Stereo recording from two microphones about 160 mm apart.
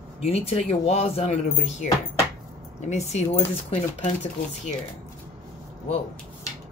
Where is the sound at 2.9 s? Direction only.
45° left (ahead or behind).